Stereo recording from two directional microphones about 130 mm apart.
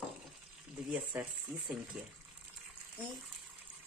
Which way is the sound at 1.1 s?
15° right (ahead or behind).